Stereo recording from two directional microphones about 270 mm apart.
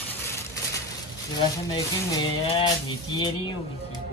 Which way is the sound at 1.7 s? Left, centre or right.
Centre.